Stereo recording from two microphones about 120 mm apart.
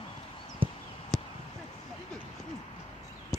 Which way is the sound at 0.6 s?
45° right (ahead or behind).